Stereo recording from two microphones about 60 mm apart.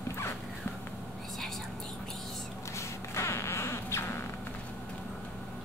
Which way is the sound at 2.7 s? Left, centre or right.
Left.